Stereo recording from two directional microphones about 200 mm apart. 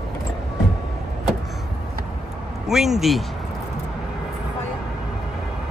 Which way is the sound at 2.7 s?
Centre (ahead or behind).